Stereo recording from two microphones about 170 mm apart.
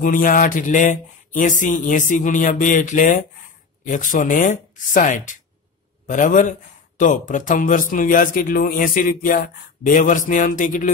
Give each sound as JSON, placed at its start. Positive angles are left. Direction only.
{"t": 0.0, "sound": "speech", "side_deg": 55}